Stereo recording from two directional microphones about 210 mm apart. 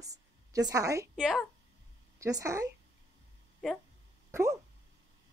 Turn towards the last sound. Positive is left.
turn(degrees=-15)  # may be behind; listen again after turning